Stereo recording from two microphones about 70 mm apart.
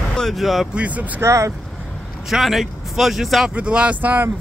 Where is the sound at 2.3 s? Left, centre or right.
Centre.